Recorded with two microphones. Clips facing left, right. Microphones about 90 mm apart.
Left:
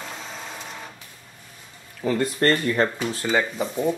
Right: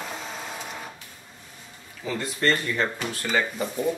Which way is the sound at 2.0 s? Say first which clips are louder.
Left 6 dB; 50° left (ahead or behind).